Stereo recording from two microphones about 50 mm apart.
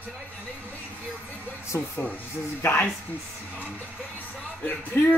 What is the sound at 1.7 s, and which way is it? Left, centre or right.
Speech, left.